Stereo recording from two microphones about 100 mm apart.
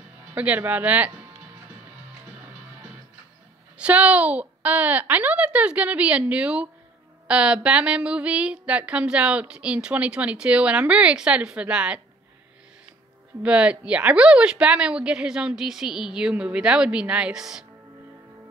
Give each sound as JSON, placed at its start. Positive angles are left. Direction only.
{"t": 0.3, "sound": "a woman's voice", "side_deg": -15}
{"t": 3.7, "sound": "a woman's voice", "side_deg": -15}
{"t": 13.4, "sound": "a woman's voice", "side_deg": -10}